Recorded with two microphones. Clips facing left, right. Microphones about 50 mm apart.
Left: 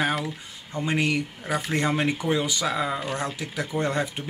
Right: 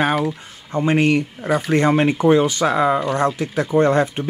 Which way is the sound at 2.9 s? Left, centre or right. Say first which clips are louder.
Right 10 dB; right.